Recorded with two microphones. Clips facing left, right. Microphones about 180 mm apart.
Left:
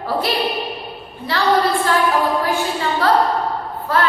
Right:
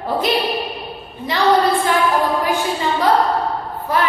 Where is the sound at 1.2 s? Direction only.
20° right (ahead or behind).